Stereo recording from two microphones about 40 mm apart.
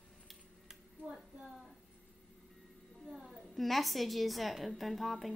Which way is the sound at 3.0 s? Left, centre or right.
Centre.